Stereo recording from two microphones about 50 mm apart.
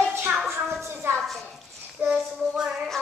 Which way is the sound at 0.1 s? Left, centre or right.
Right.